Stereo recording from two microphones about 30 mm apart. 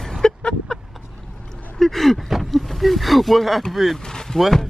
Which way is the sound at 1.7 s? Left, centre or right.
Centre.